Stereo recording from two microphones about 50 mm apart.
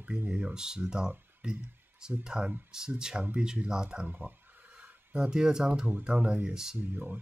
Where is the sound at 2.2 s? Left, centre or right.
Centre.